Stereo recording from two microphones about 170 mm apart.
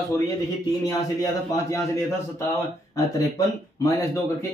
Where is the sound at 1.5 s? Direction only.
20° left (ahead or behind).